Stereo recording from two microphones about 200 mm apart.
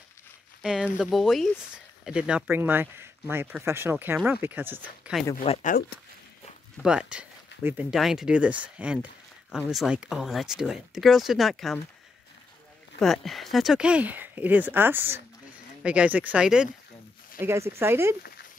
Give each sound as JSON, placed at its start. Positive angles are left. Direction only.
{"t": 0.6, "sound": "speech", "side_deg": -5}
{"t": 5.4, "sound": "speech", "side_deg": 30}
{"t": 6.8, "sound": "speech", "side_deg": -5}
{"t": 13.0, "sound": "speech", "side_deg": 0}